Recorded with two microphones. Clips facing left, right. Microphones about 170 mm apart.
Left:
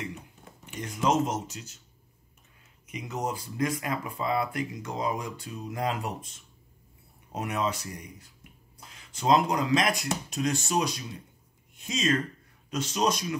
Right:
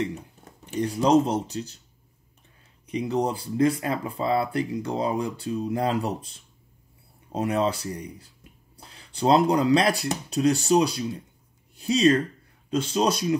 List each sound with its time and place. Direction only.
0.7 s speech: 35° right (ahead or behind)
2.9 s speech: 30° right (ahead or behind)